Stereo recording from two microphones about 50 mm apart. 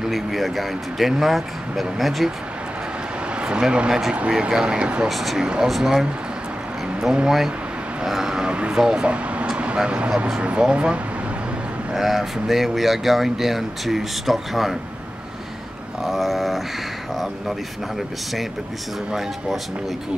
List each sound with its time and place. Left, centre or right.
0.0 s speech: centre
3.3 s speech: centre
5.0 s speech: centre
5.4 s speech: centre
7.2 s speech: centre; by 9.5 s right
9.5 s a sound: right
9.8 s speech: right
11.9 s speech: centre
16.0 s a sound: centre